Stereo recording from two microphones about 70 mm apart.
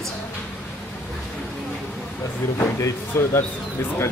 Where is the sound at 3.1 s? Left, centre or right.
Left.